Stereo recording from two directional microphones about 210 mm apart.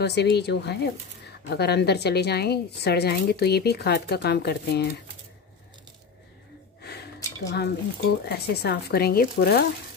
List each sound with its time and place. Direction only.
0.0 s a woman's voice: 50° left (ahead or behind)
6.8 s gasp: 50° left (ahead or behind)
7.4 s a woman's voice: 50° left (ahead or behind)